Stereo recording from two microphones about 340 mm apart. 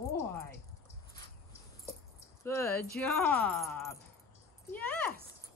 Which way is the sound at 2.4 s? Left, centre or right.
Centre.